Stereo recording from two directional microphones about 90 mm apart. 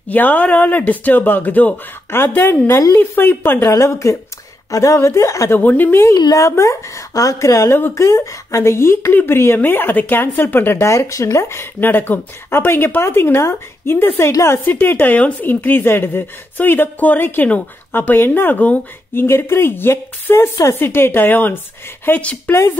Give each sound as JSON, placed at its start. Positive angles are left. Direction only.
{"t": 0.1, "sound": "a woman's voice", "side_deg": 15}
{"t": 5.6, "sound": "speech", "side_deg": 20}
{"t": 6.1, "sound": "a woman's voice", "side_deg": 45}